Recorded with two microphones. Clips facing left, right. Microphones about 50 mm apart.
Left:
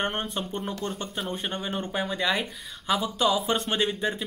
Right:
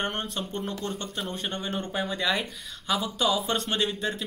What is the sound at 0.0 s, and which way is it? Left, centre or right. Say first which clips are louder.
Speech: left 2 dB; centre.